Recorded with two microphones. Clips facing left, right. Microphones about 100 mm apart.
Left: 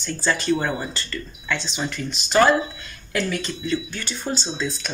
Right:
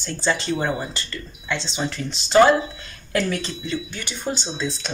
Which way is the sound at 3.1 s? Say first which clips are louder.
Right 2 dB; 40° right (ahead or behind).